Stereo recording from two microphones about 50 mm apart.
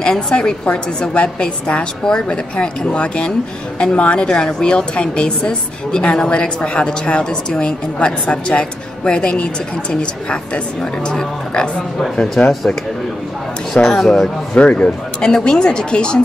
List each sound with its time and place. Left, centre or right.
0.0 s a woman's voice: centre
13.7 s a woman's voice: centre
14.5 s a woman's voice: left